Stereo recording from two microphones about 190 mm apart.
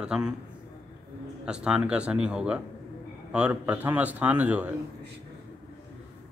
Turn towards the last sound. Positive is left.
turn(degrees=-10)  # may be behind; listen again after turning